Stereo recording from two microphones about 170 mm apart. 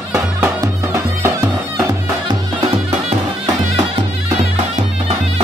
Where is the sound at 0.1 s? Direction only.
15° right (ahead or behind).